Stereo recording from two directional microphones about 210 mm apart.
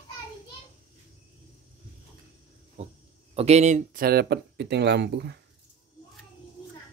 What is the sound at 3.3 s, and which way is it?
Speech, 30° right (ahead or behind).